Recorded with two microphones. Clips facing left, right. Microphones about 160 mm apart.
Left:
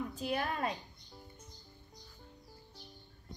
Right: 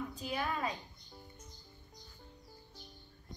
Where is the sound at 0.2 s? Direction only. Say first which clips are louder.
Left 2 dB; 55° left (ahead or behind).